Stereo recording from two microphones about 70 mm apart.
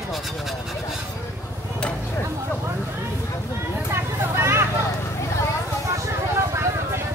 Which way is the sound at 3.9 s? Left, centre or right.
Right.